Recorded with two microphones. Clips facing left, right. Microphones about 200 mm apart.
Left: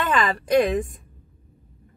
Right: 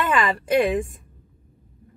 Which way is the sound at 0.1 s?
5° right (ahead or behind).